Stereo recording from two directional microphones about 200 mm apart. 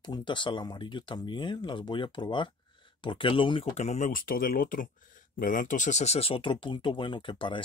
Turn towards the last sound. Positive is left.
turn(degrees=25)  # may be behind; listen again after turning